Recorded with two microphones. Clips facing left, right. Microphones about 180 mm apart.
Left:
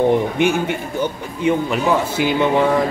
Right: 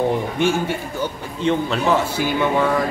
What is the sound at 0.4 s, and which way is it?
Speech, 20° left (ahead or behind).